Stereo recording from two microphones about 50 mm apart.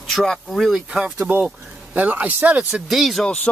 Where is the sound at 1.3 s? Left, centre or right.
Right.